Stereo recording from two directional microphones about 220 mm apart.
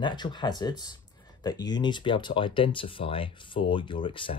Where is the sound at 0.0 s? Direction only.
20° left (ahead or behind).